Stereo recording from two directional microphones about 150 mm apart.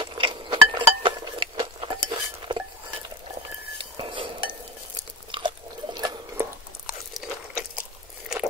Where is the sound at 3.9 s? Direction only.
35° right (ahead or behind).